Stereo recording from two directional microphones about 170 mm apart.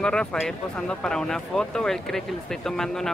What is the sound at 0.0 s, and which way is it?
Speech, 5° left (ahead or behind).